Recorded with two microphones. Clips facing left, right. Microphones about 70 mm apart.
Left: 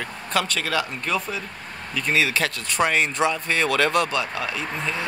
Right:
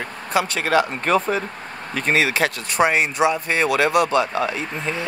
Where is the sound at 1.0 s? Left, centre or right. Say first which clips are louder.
Right 7 dB; right.